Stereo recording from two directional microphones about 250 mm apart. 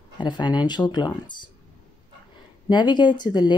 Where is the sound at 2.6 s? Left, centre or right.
Centre.